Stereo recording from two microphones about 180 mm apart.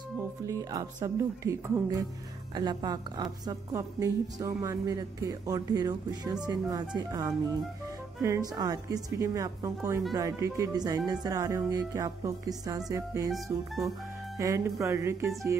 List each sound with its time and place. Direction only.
0.5 s a woman's voice: 20° right (ahead or behind)
13.3 s music: centre (ahead or behind)
14.3 s speech: 15° right (ahead or behind)